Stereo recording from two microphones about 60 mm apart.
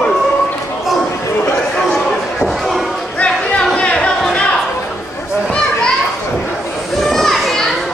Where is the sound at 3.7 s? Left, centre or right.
Centre.